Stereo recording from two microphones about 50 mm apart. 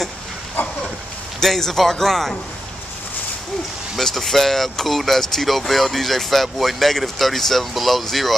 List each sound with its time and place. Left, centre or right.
0.6 s dog: left
1.4 s speech: centre
3.9 s speech: centre